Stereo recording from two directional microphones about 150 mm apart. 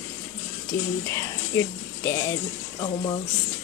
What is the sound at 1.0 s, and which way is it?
A woman's voice, 20° left (ahead or behind).